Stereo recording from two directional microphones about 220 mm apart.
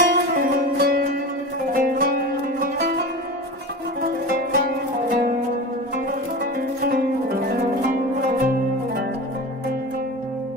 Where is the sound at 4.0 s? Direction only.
40° right (ahead or behind).